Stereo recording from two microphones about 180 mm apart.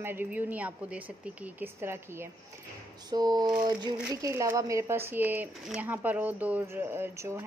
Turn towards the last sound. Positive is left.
turn(degrees=-15)  # may be behind; listen again after turning